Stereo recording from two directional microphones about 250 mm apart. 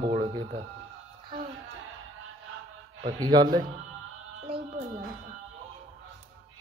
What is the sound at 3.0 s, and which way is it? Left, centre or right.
Speech, centre.